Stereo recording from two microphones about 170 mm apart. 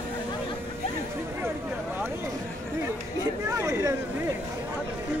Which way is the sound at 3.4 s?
15° right (ahead or behind).